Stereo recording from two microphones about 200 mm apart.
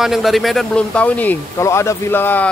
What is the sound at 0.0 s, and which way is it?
Speech, centre (ahead or behind).